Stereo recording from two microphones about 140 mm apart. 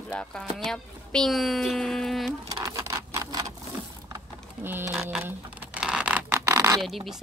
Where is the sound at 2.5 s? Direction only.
25° right (ahead or behind).